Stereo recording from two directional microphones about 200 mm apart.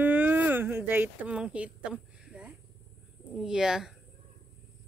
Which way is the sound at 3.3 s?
5° right (ahead or behind).